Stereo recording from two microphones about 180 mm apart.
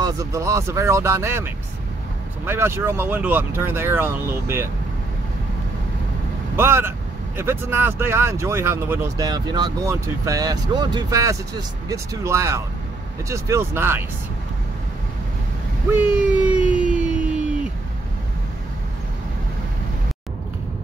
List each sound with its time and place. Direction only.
0.0 s speech: 20° right (ahead or behind)
6.5 s speech: 15° right (ahead or behind)
15.9 s a sound: 10° right (ahead or behind)